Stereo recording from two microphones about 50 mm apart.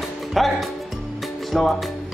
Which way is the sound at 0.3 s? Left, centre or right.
Centre.